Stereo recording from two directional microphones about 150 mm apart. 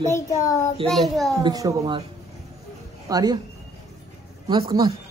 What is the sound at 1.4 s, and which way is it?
Speech, 25° right (ahead or behind).